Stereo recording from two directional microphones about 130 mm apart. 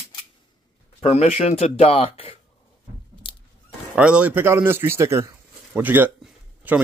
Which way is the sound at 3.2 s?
40° left (ahead or behind).